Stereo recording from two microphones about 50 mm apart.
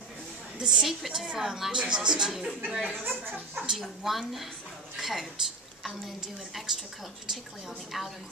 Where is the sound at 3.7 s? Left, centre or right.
Centre.